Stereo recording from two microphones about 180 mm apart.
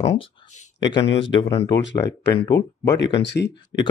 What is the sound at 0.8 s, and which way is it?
Speech, 25° left (ahead or behind).